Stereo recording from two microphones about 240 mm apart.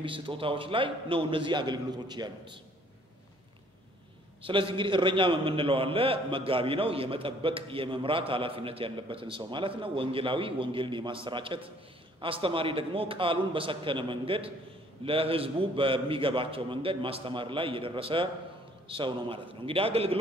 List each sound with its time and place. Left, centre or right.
0.0 s a man's voice: right
4.4 s a man's voice: right